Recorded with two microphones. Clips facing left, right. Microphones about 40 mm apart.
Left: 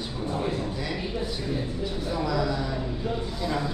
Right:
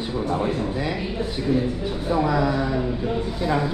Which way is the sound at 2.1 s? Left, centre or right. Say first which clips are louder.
Right 7 dB; right.